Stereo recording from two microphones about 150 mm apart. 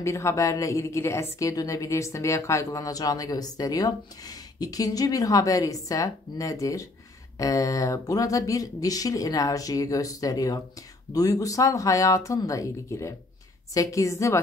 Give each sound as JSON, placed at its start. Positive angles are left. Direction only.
{"t": 0.0, "sound": "speech", "side_deg": 20}